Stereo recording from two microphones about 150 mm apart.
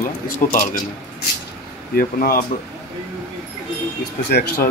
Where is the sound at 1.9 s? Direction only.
75° left (ahead or behind).